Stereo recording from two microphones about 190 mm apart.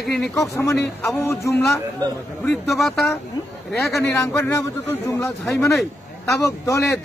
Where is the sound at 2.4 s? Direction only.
Centre (ahead or behind).